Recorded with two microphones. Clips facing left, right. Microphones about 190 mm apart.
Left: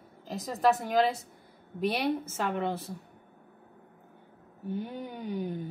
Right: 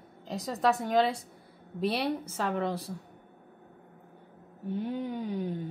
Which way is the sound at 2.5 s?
Centre (ahead or behind).